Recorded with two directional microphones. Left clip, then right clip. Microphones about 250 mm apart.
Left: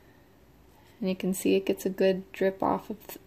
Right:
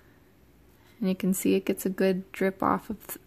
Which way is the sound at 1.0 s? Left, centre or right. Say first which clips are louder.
Right 1 dB; right.